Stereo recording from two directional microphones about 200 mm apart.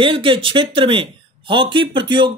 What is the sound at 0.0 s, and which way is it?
Speech, 25° right (ahead or behind).